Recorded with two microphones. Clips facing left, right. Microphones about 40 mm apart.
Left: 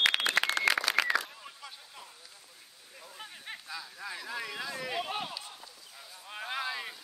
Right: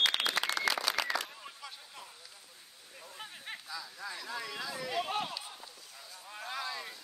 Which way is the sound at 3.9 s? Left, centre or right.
Centre.